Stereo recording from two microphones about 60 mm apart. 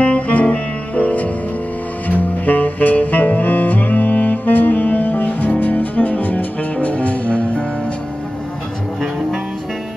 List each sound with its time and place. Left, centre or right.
0.0 s music: left